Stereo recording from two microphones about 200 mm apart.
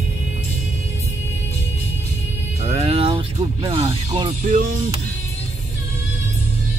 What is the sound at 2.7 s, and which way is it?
Music, 30° right (ahead or behind).